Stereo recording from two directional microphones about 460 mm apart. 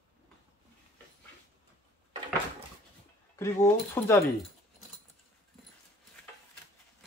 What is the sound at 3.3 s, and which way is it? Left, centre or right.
Speech, centre.